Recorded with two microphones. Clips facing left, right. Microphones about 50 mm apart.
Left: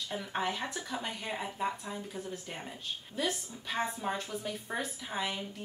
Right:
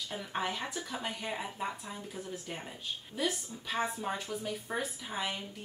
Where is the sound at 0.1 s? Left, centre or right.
Centre.